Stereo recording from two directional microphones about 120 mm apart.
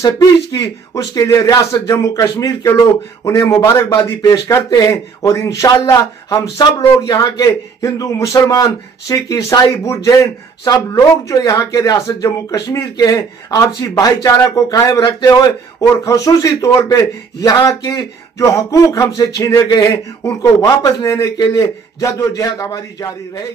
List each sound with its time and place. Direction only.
0.0 s a man's voice: 30° left (ahead or behind)